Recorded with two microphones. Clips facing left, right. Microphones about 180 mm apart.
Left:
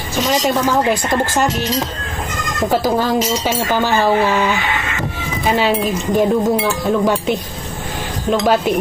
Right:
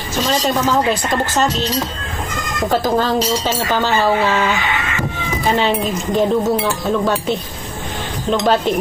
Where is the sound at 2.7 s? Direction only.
10° left (ahead or behind).